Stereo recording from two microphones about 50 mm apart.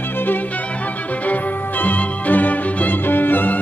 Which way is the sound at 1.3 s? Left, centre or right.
Left.